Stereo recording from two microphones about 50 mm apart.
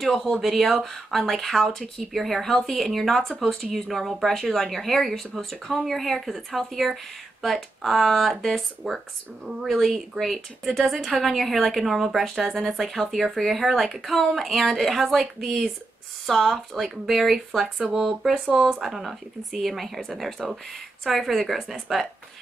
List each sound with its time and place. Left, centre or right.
0.2 s speech: centre
18.3 s speech: centre
18.7 s speech: centre